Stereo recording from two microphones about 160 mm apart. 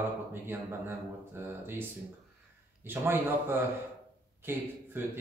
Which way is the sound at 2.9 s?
15° right (ahead or behind).